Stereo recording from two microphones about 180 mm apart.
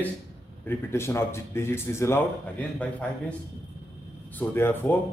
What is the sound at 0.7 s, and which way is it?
Speech, 15° left (ahead or behind).